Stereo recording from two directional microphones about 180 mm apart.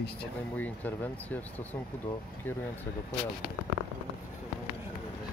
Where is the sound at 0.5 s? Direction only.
10° left (ahead or behind).